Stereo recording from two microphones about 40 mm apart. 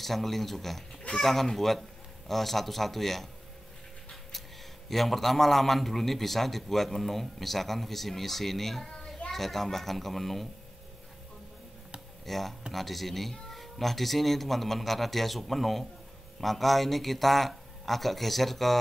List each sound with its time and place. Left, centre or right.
0.0 s a man's voice: centre
4.8 s a man's voice: centre
12.3 s a man's voice: centre